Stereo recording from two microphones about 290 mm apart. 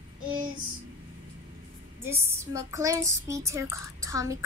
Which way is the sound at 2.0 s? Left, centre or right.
Centre.